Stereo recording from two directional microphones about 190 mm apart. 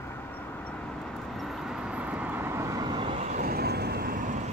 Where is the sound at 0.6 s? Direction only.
5° left (ahead or behind).